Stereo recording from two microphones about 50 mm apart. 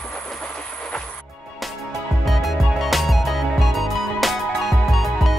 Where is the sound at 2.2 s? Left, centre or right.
Centre.